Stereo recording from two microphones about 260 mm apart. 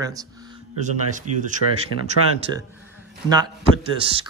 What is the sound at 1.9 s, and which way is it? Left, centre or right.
Speech, left.